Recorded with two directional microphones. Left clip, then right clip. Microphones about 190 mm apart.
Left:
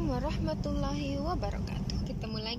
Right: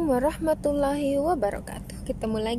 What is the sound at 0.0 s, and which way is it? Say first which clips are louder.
Speech: right 11 dB; 40° right (ahead or behind).